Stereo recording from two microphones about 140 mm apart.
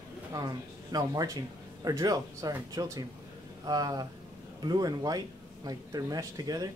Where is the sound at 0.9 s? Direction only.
25° right (ahead or behind).